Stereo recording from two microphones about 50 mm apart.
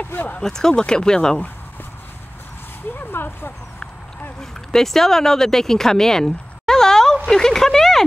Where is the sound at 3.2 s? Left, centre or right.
Left.